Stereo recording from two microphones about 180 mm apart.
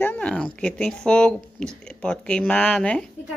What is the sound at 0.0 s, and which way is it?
A woman's voice, 10° left (ahead or behind).